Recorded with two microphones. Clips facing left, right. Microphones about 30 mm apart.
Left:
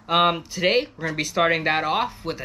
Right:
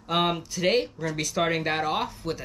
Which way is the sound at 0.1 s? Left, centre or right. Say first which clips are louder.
Left 5 dB; left.